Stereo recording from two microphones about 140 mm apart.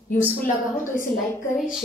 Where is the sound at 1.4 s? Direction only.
75° left (ahead or behind).